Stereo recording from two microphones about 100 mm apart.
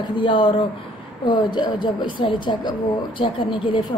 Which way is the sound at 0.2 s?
60° left (ahead or behind).